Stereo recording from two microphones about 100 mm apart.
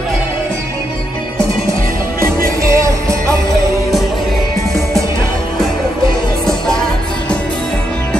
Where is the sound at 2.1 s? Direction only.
30° right (ahead or behind).